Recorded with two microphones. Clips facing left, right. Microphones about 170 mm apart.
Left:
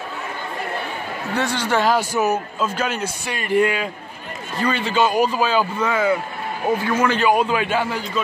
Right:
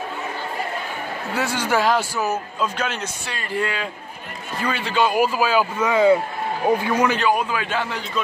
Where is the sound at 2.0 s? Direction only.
20° left (ahead or behind).